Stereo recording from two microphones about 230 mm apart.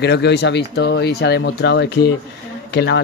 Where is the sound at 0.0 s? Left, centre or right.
Left.